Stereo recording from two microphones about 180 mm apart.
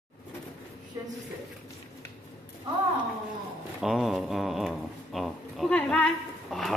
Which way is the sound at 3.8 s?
Centre (ahead or behind).